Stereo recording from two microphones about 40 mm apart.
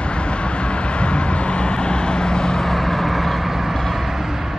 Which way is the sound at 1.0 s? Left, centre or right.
Left.